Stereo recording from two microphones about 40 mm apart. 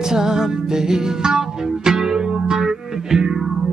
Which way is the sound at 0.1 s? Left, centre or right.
Centre.